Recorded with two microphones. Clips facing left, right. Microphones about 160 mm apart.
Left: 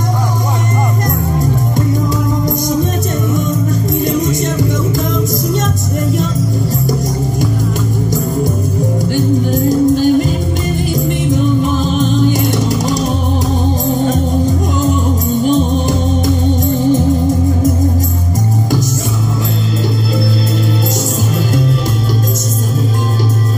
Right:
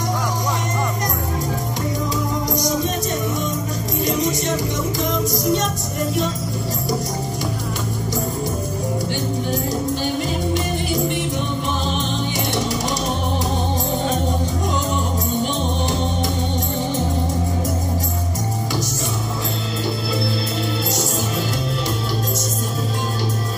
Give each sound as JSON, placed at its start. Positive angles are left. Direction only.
{"t": 4.0, "sound": "music", "side_deg": 50}
{"t": 9.1, "sound": "music", "side_deg": 45}
{"t": 11.8, "sound": "music", "side_deg": 45}